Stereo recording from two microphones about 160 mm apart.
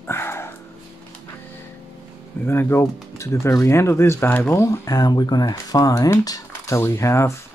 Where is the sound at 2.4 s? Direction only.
15° left (ahead or behind).